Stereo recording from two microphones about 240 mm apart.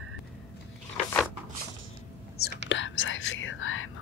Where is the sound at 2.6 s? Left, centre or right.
Left.